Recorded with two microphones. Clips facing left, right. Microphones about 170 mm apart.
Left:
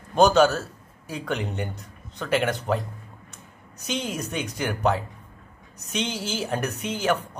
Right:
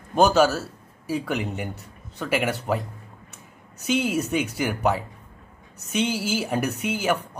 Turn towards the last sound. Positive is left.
turn(degrees=-10)  # may be behind; listen again after turning